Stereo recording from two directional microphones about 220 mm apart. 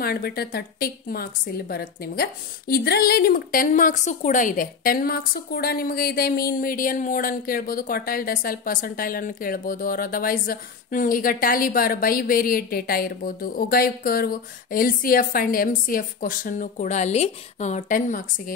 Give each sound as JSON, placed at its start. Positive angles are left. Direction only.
{"t": 0.0, "sound": "a woman's voice", "side_deg": 45}